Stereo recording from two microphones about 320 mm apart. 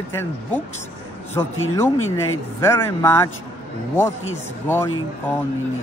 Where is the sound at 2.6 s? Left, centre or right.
Centre.